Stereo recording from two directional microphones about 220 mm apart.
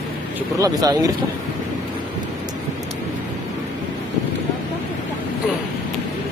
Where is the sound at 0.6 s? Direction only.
15° right (ahead or behind).